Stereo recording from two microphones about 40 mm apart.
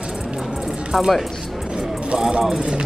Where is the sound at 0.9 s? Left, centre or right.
Centre.